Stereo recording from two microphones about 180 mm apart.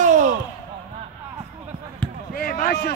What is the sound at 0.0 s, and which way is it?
Basketball bounce, 45° right (ahead or behind).